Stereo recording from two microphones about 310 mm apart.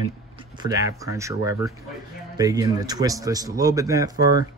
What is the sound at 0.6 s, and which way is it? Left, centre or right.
A man's voice, centre.